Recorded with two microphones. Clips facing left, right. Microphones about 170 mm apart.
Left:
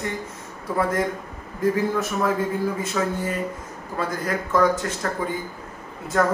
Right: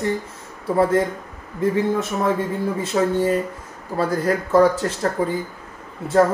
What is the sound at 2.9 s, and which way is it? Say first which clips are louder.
A man's voice: right 10 dB; 30° right (ahead or behind).